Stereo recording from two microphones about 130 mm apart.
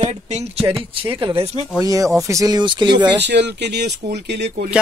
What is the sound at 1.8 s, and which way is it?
Speech, 25° right (ahead or behind).